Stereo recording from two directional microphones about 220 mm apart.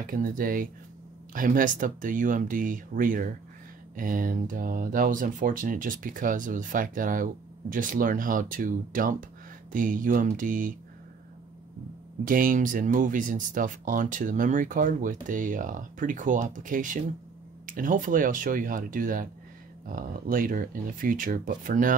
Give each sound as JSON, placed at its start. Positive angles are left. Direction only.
{"t": 0.0, "sound": "speech", "side_deg": -40}
{"t": 12.3, "sound": "speech", "side_deg": -40}